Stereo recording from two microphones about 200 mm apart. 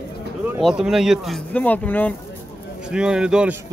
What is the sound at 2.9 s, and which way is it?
Speech, 5° right (ahead or behind).